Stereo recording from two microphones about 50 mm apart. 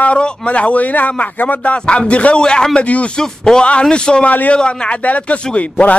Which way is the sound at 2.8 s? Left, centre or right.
Left.